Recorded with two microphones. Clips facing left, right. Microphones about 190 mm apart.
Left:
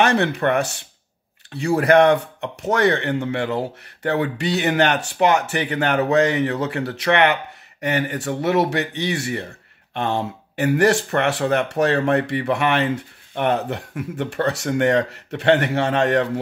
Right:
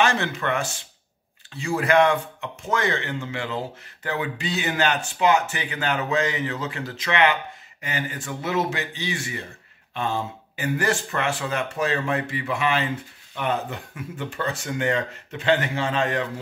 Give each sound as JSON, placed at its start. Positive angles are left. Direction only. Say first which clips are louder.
{"t": 0.0, "sound": "speech", "louder": "left 5 dB", "side_deg": 65}